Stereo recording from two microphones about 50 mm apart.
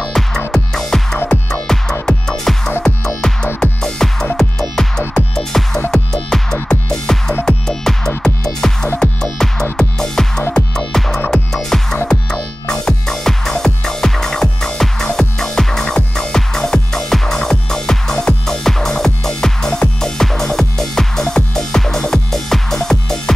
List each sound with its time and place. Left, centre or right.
0.5 s music: centre